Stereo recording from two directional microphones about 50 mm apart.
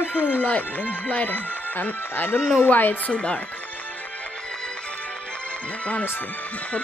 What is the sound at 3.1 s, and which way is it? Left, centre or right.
Speech, left.